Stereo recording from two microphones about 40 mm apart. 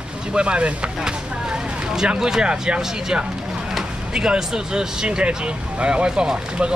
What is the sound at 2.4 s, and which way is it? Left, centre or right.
Speech, centre.